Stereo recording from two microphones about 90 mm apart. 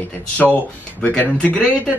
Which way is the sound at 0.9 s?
15° left (ahead or behind).